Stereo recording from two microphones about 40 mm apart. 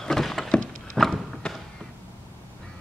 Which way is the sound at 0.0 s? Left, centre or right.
Centre.